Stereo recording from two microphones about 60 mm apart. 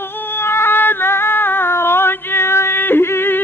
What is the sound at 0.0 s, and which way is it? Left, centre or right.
Cat, left.